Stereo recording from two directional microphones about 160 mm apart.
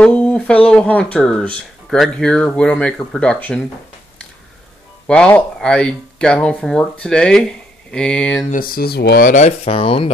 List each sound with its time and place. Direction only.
0.0 s speech: 5° left (ahead or behind)
5.0 s speech: 5° left (ahead or behind)
8.5 s speech: 65° left (ahead or behind)
9.3 s speech: 45° left (ahead or behind)